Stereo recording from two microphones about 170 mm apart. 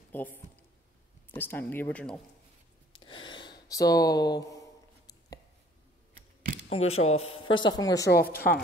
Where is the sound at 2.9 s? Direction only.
30° left (ahead or behind).